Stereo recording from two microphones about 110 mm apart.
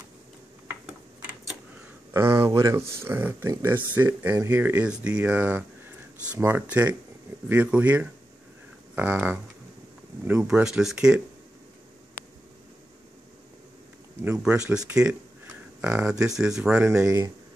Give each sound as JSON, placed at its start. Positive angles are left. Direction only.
{"t": 2.1, "sound": "speech", "side_deg": -25}
{"t": 14.4, "sound": "speech", "side_deg": -10}